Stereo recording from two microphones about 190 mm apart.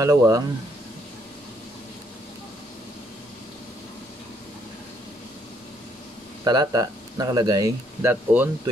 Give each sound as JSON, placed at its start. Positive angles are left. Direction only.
{"t": 0.0, "sound": "speech", "side_deg": -15}
{"t": 6.4, "sound": "speech", "side_deg": -20}